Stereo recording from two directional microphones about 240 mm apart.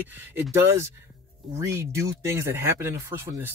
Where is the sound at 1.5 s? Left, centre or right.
Centre.